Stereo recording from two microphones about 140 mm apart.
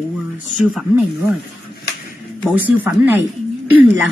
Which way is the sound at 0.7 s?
5° right (ahead or behind).